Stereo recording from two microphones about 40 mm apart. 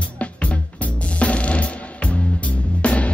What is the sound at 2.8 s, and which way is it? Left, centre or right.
Music, left.